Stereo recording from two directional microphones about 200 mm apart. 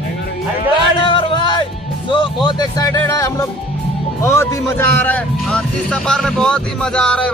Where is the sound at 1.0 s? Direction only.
25° left (ahead or behind).